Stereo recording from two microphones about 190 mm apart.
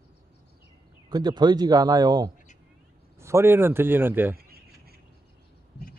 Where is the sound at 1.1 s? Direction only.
20° right (ahead or behind).